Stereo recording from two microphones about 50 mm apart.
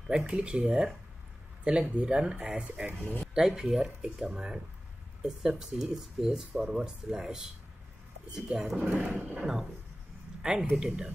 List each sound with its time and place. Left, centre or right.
0.1 s speech: centre
8.7 s speech: right
10.4 s speech: centre